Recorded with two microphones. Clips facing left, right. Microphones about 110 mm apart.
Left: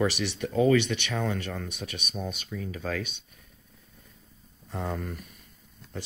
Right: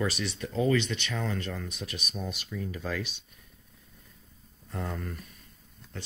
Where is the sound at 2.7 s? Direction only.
50° left (ahead or behind).